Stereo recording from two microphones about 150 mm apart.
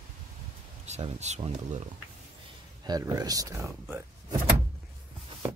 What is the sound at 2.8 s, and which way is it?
Speech, 25° right (ahead or behind).